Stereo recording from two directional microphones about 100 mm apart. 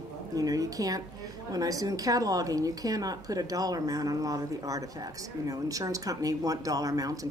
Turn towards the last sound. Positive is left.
turn(degrees=-35)  # may be behind; listen again after turning